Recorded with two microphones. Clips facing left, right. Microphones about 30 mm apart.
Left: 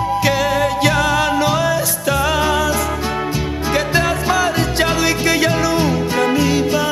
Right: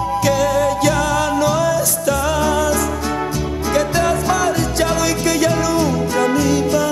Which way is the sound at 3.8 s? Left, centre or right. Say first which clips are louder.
Right 1 dB; left.